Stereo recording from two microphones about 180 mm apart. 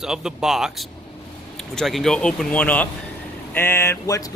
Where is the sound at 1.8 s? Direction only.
Centre (ahead or behind).